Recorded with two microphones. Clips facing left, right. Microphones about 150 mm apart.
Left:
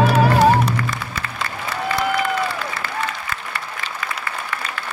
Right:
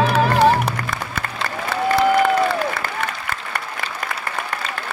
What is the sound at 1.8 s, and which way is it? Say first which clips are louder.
Applause: right 6 dB; 45° right (ahead or behind).